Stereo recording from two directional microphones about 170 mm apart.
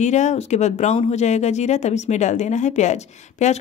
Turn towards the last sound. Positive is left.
turn(degrees=45)  # may be behind; listen again after turning